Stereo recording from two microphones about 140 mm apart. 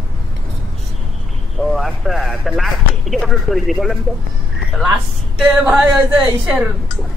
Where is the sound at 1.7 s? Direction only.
Centre (ahead or behind).